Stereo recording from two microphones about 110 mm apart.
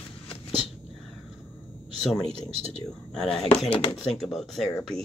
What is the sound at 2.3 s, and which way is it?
Speech, 60° right (ahead or behind).